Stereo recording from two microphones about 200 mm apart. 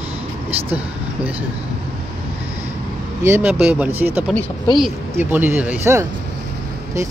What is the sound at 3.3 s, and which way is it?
Speech, 10° right (ahead or behind).